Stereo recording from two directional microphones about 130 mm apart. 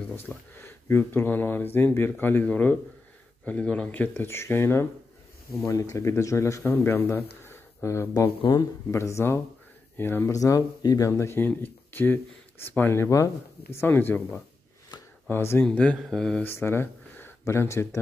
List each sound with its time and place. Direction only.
0.1 s speech: 15° left (ahead or behind)
16.4 s speech: 20° left (ahead or behind)